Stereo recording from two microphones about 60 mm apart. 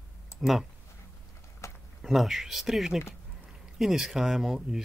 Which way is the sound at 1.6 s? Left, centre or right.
Left.